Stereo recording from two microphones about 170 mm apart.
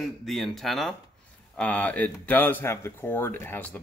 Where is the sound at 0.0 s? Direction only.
Centre (ahead or behind).